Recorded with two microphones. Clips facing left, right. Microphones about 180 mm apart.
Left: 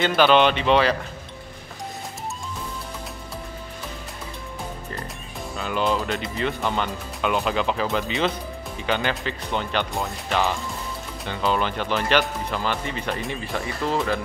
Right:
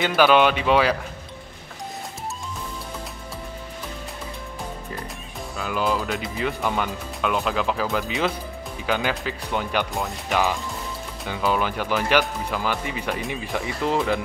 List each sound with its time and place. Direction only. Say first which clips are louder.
0.0 s speech: even; 5° right (ahead or behind)
5.6 s speech: left 1 dB; 5° right (ahead or behind)
13.8 s speech: right 2 dB; 15° right (ahead or behind)